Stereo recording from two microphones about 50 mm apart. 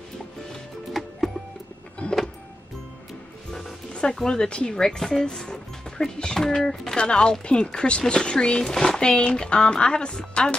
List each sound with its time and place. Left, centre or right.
2.0 s vehicle: left
4.3 s speech: centre